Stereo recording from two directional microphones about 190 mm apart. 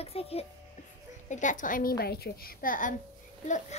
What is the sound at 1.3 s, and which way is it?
A child's voice, 40° left (ahead or behind).